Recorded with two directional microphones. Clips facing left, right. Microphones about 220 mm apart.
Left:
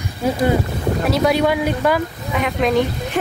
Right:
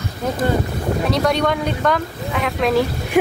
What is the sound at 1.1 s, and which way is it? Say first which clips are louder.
Speech: left 3 dB; 5° left (ahead or behind).